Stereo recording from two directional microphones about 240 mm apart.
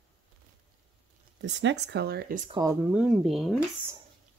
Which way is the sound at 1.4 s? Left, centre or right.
Right.